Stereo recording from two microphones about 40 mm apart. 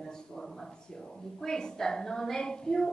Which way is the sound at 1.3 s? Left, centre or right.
Centre.